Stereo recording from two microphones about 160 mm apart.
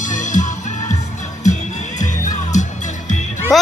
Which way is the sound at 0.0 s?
50° left (ahead or behind).